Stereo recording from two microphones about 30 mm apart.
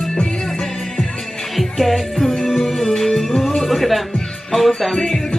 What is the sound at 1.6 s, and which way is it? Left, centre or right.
Music, centre.